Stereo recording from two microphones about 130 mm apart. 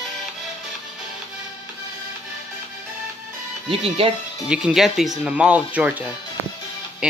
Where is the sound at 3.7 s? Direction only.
45° right (ahead or behind).